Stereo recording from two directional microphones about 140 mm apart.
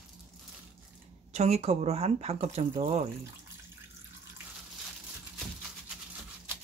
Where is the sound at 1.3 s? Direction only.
50° right (ahead or behind).